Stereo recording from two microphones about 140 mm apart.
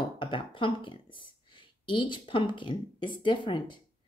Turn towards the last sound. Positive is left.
turn(degrees=35)  # may be behind; listen again after turning